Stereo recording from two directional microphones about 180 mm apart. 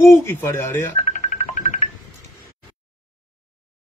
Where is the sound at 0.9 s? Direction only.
40° left (ahead or behind).